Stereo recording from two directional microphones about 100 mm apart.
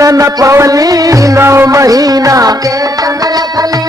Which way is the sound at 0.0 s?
35° right (ahead or behind).